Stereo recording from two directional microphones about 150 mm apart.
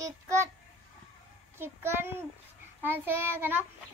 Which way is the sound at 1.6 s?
15° right (ahead or behind).